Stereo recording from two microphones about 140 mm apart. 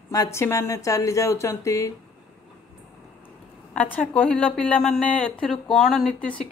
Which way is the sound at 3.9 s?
10° left (ahead or behind).